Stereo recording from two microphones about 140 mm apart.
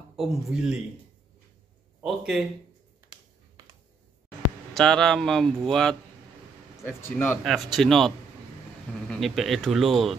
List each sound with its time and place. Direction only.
0.1 s speech: 5° right (ahead or behind)
2.0 s speech: centre (ahead or behind)
4.7 s speech: 5° left (ahead or behind)
6.8 s speech: 15° left (ahead or behind)
7.4 s speech: centre (ahead or behind)
9.1 s speech: centre (ahead or behind)